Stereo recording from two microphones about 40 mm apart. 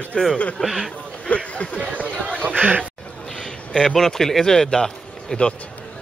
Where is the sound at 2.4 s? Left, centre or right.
Right.